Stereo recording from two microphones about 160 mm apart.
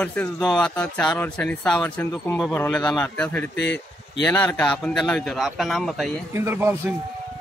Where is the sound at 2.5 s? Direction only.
15° left (ahead or behind).